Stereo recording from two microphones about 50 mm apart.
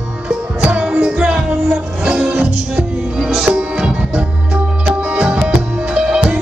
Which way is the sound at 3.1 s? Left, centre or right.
Centre.